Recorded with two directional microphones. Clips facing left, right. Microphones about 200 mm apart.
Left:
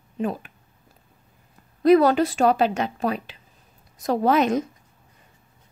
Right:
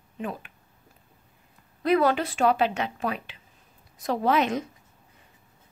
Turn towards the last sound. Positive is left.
turn(degrees=40)  # may be behind; listen again after turning